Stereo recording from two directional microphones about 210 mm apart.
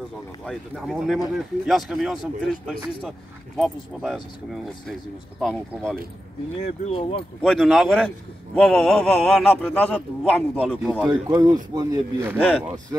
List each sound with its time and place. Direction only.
0.5 s speech: centre (ahead or behind)
5.4 s speech: centre (ahead or behind)
6.6 s speech: 30° left (ahead or behind)
7.4 s speech: centre (ahead or behind)
11.1 s speech: 20° right (ahead or behind)